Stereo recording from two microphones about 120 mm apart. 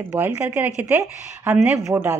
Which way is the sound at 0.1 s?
20° right (ahead or behind).